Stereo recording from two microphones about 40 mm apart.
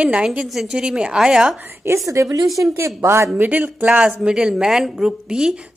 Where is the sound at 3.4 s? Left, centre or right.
Right.